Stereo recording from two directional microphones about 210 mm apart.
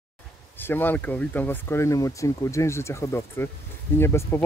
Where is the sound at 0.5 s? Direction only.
10° left (ahead or behind).